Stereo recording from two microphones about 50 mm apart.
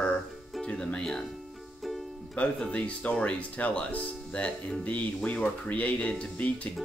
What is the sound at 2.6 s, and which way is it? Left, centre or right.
Speech, left.